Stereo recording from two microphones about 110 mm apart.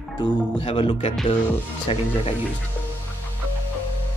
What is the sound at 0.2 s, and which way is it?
Speech, 45° left (ahead or behind).